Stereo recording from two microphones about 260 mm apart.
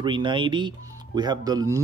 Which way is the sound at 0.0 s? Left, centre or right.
Centre.